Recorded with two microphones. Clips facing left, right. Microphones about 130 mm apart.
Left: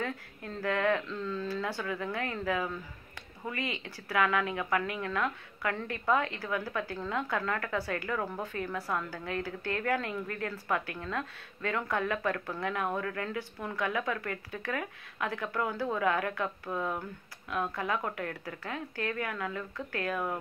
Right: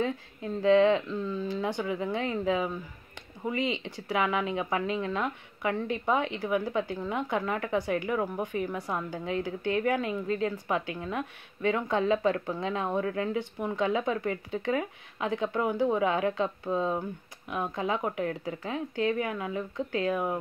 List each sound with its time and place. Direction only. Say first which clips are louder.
0.0 s speech: right 6 dB; 20° right (ahead or behind)